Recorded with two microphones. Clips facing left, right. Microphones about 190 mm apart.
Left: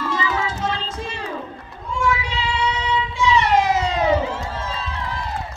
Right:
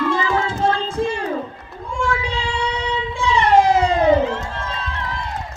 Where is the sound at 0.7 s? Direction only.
55° right (ahead or behind).